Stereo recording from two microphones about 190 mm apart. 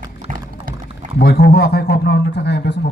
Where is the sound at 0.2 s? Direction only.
45° right (ahead or behind).